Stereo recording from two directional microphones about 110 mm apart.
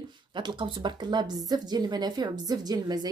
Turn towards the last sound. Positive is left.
turn(degrees=-40)  # may be behind; listen again after turning